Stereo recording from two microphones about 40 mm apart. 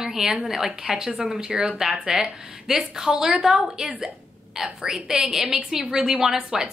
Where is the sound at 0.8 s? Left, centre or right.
Centre.